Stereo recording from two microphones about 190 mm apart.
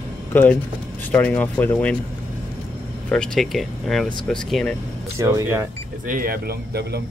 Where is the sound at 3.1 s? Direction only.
5° left (ahead or behind).